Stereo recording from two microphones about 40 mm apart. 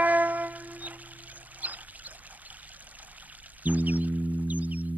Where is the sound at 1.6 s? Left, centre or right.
Right.